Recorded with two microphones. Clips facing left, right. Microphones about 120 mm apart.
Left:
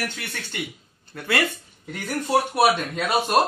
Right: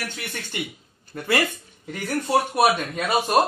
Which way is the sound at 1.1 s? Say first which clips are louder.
Right 3 dB; 15° right (ahead or behind).